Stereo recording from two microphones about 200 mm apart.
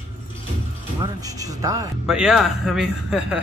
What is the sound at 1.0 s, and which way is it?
Speech, 15° right (ahead or behind).